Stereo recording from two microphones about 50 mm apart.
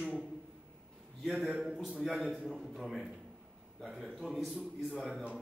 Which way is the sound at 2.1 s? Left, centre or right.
Centre.